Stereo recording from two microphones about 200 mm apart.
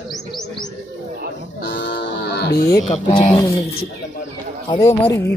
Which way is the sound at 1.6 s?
65° left (ahead or behind).